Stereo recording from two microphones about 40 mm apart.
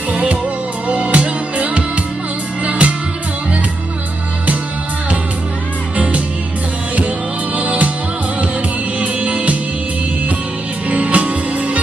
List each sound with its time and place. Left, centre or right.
0.1 s music: right
7.5 s music: right
9.0 s music: right
10.9 s music: right